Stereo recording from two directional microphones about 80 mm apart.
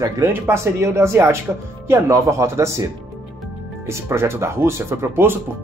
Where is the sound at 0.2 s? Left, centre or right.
Right.